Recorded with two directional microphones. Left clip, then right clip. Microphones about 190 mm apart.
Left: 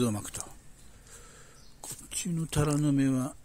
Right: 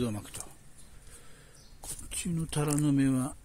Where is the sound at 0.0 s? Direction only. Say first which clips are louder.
Left 4 dB; 25° left (ahead or behind).